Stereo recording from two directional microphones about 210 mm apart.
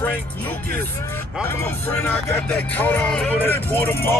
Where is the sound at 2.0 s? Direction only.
10° left (ahead or behind).